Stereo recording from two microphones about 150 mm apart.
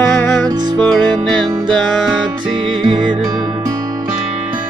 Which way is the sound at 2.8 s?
35° right (ahead or behind).